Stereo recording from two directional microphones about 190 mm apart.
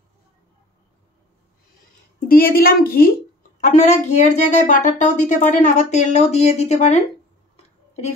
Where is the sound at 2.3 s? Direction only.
50° left (ahead or behind).